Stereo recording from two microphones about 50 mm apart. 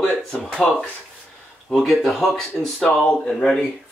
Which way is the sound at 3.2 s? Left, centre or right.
Centre.